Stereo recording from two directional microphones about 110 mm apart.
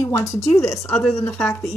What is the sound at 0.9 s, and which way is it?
Speech, 10° left (ahead or behind).